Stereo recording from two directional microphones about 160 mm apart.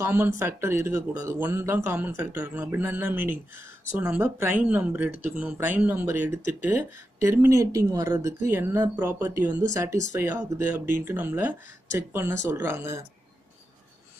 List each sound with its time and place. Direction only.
0.0 s speech: 15° right (ahead or behind)